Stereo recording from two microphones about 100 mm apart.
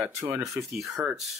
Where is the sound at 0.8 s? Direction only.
Centre (ahead or behind).